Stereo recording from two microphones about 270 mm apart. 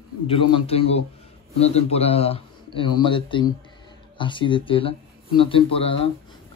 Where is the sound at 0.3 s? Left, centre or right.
Left.